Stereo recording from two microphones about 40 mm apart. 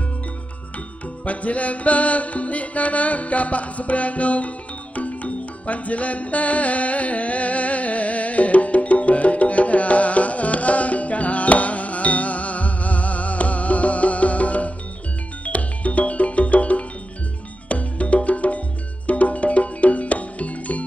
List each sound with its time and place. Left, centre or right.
1.2 s music: left